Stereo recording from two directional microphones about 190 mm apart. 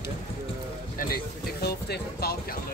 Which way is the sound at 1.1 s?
55° left (ahead or behind).